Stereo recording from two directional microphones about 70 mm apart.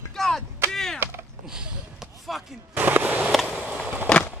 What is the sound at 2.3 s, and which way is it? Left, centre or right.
Gunshot, centre.